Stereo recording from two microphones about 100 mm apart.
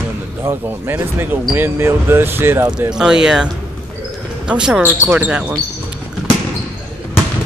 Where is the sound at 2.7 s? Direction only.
5° right (ahead or behind).